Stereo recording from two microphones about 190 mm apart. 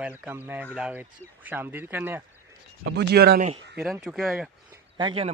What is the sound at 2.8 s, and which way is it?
Speech, 65° right (ahead or behind).